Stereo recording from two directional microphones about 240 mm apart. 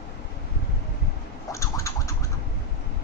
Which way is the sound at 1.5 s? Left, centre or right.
Centre.